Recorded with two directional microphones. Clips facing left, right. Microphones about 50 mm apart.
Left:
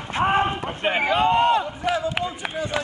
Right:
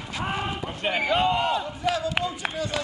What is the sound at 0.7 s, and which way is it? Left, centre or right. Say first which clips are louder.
Speech: left 3 dB; left.